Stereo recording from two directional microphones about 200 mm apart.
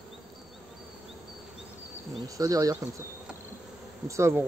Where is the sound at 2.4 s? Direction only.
15° right (ahead or behind).